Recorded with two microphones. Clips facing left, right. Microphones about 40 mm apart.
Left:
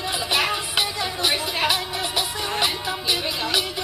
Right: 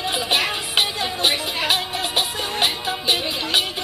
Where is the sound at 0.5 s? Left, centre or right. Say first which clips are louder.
Right 2 dB; right.